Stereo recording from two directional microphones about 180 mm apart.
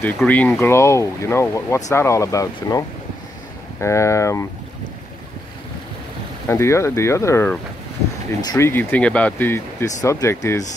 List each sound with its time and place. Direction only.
0.2 s speech: 10° left (ahead or behind)
3.8 s speech: 15° left (ahead or behind)
6.4 s speech: 15° left (ahead or behind)